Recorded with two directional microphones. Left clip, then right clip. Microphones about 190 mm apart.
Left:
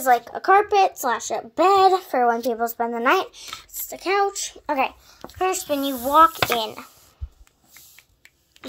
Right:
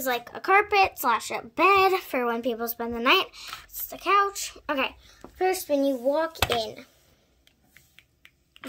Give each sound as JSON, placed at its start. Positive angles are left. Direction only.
{"t": 0.0, "sound": "speech", "side_deg": -25}
{"t": 0.3, "sound": "a child's voice", "side_deg": -10}
{"t": 0.7, "sound": "speech", "side_deg": -40}
{"t": 1.0, "sound": "a woman's voice", "side_deg": -5}
{"t": 2.0, "sound": "speech", "side_deg": -30}
{"t": 3.9, "sound": "a child's voice", "side_deg": 15}
{"t": 5.9, "sound": "speech", "side_deg": 60}